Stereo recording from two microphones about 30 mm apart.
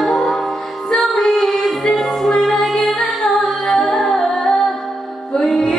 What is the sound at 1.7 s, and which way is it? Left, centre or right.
Music, centre.